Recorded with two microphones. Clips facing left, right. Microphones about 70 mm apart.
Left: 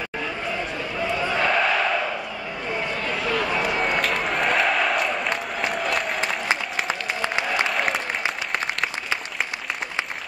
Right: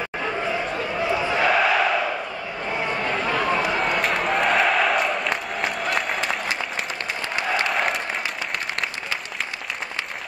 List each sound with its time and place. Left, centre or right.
1.0 s battle cry: centre
3.0 s run: right
3.6 s crowd: centre
7.6 s applause: centre